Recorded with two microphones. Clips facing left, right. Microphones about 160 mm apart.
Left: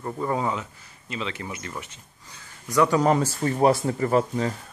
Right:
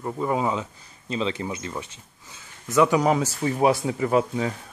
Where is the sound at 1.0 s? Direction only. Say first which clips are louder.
Right 5 dB; 30° right (ahead or behind).